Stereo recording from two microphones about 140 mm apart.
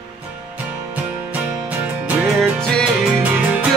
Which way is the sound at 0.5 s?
10° right (ahead or behind).